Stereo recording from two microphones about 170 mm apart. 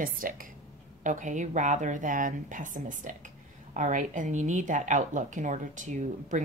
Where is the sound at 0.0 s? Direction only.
55° right (ahead or behind).